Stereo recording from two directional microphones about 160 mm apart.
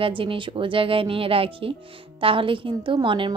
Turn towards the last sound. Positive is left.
turn(degrees=-30)  # may be behind; listen again after turning